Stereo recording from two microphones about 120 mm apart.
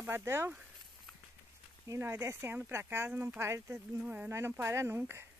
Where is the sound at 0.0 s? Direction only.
20° right (ahead or behind).